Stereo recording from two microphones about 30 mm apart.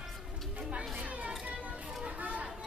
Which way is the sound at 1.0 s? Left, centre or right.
Right.